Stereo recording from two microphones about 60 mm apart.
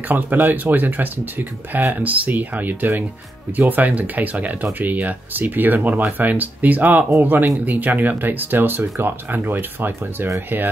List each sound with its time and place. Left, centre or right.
0.1 s speech: right